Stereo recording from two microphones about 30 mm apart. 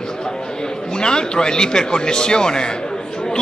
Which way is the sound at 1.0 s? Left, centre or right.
Left.